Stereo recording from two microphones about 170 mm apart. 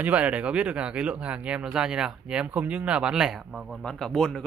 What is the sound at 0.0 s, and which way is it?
Speech, 10° right (ahead or behind).